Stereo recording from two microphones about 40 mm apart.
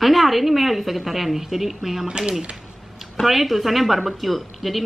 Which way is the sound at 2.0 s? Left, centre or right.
Right.